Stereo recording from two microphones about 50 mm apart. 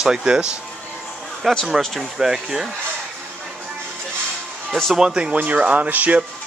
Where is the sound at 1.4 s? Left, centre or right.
Centre.